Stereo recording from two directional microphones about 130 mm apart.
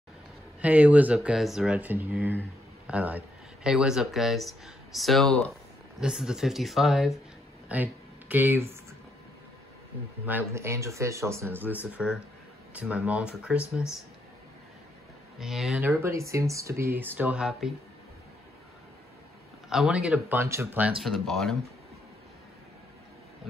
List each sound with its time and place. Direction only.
0.6 s speech: 10° right (ahead or behind)
7.6 s speech: 10° right (ahead or behind)
10.2 s speech: 15° right (ahead or behind)
15.3 s speech: centre (ahead or behind)
15.8 s speech: 20° right (ahead or behind)
19.7 s speech: 5° right (ahead or behind)
21.0 s speech: centre (ahead or behind)